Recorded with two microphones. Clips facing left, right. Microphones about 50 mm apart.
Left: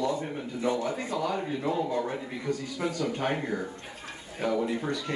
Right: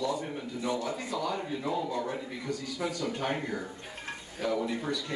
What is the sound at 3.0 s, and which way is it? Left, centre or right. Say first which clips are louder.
A man's voice: left 4 dB; left.